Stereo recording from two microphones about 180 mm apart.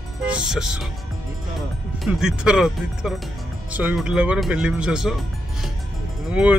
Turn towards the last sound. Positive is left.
turn(degrees=-5)  # may be behind; listen again after turning